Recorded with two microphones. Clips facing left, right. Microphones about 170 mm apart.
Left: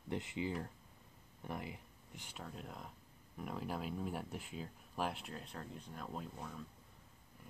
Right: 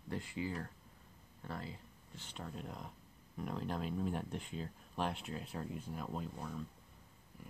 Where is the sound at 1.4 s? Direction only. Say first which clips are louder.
Left 1 dB; 15° left (ahead or behind).